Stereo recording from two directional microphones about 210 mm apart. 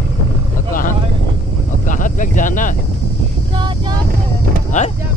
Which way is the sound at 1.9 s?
40° left (ahead or behind).